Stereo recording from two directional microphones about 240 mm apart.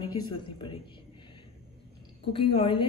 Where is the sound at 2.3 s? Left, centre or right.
Left.